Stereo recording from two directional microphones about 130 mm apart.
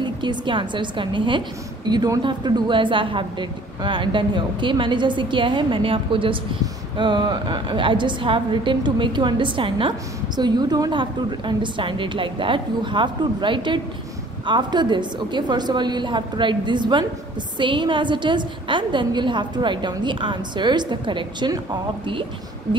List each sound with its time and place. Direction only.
0.0 s a woman's voice: 35° right (ahead or behind)